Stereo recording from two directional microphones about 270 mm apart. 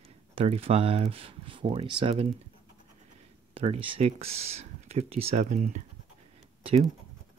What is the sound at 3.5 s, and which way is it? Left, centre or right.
Speech, right.